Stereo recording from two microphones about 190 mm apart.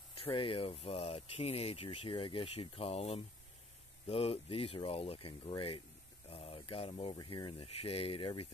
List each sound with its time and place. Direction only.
0.2 s speech: 25° left (ahead or behind)